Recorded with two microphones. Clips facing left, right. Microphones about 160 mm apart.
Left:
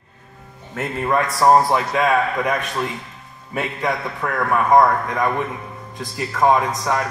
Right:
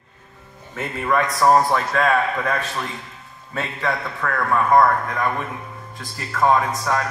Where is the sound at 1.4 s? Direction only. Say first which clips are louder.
Left 2 dB; 20° left (ahead or behind).